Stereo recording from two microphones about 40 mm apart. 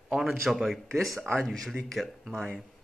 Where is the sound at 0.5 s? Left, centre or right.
Centre.